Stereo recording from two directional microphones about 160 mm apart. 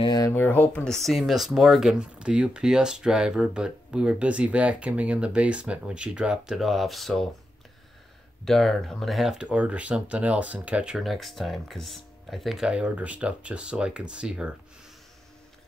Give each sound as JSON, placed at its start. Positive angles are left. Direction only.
{"t": 0.0, "sound": "a sound", "side_deg": 25}
{"t": 0.3, "sound": "speech", "side_deg": 15}
{"t": 8.5, "sound": "speech", "side_deg": 0}